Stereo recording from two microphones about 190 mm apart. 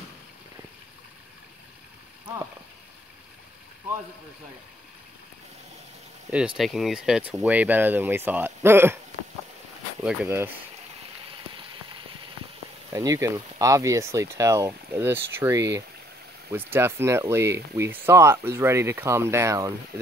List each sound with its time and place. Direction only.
6.3 s speech: 5° right (ahead or behind)
10.2 s speech: 10° right (ahead or behind)
12.9 s speech: 15° right (ahead or behind)